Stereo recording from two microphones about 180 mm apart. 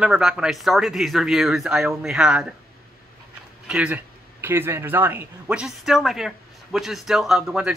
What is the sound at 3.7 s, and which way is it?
Speech, 5° right (ahead or behind).